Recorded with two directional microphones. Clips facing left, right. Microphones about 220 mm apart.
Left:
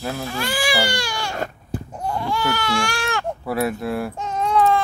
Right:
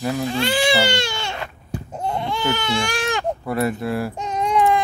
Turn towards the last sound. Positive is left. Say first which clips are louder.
# even
turn(degrees=-15)  # may be behind; listen again after turning